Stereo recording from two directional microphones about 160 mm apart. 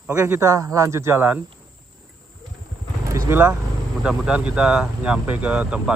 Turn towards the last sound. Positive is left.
turn(degrees=-5)  # may be behind; listen again after turning